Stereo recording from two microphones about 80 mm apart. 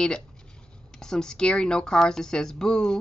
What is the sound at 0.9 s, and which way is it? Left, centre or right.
Speech, centre.